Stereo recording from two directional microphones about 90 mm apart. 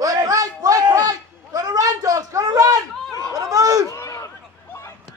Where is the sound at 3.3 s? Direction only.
45° right (ahead or behind).